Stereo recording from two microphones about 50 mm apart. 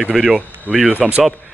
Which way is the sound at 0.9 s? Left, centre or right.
Right.